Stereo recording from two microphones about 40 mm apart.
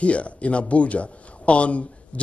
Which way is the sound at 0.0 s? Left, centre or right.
Left.